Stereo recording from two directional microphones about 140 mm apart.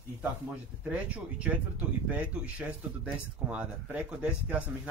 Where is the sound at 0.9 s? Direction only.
10° right (ahead or behind).